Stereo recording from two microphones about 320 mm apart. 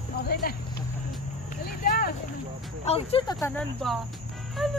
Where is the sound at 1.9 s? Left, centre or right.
Left.